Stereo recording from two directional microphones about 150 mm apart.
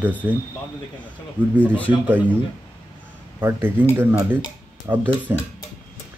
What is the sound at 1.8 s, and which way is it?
Speech, 10° right (ahead or behind).